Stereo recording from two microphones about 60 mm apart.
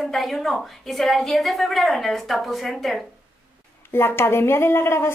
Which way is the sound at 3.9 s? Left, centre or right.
Left.